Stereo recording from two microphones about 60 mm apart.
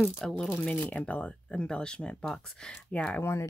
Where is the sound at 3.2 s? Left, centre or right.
Left.